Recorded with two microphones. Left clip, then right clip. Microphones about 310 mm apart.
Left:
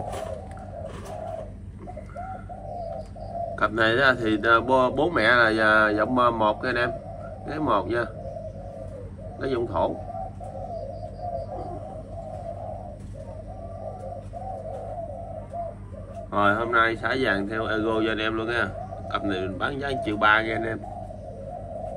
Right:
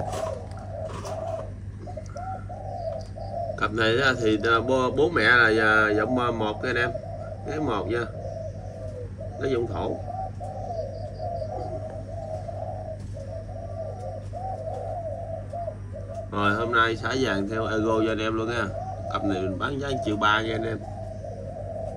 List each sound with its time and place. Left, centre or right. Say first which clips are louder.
3.5 s a man's voice: left 2 dB; centre
5.4 s speech: even; left
6.2 s a man's voice: left 5 dB; centre
9.4 s a man's voice: left 2 dB; centre
16.3 s a man's voice: left 3 dB; centre